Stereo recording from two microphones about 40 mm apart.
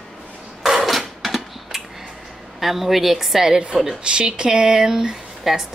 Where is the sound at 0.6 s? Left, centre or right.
Centre.